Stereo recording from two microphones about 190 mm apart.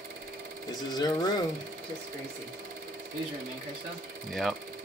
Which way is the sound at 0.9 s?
20° left (ahead or behind).